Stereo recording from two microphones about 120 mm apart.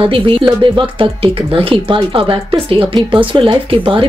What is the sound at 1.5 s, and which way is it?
Speech, 45° right (ahead or behind).